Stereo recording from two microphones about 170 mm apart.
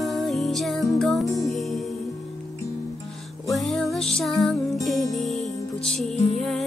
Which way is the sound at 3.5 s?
Centre (ahead or behind).